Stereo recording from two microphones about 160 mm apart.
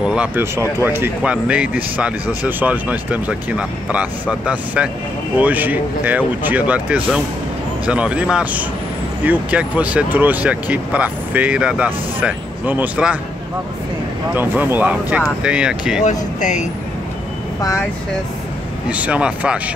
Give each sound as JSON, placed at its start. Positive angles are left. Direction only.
{"t": 0.0, "sound": "speech", "side_deg": -5}
{"t": 14.3, "sound": "speech", "side_deg": -10}
{"t": 16.0, "sound": "speech", "side_deg": 45}
{"t": 17.6, "sound": "speech", "side_deg": 20}
{"t": 18.9, "sound": "speech", "side_deg": -10}